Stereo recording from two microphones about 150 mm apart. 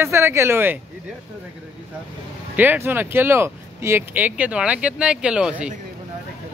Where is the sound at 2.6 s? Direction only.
10° right (ahead or behind).